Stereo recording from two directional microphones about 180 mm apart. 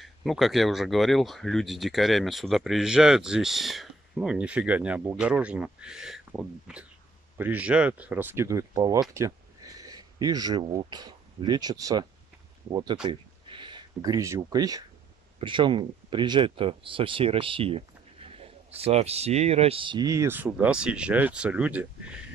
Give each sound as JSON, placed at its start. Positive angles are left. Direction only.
{"t": 0.0, "sound": "speech", "side_deg": 0}